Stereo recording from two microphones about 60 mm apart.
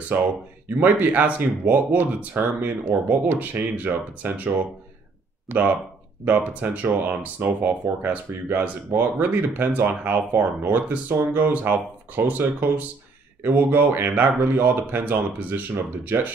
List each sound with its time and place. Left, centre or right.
0.1 s speech: right
5.5 s speech: right